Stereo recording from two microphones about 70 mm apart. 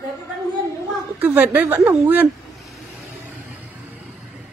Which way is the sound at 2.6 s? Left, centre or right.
Centre.